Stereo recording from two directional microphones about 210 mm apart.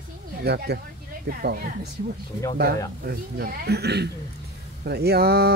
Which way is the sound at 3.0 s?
45° right (ahead or behind).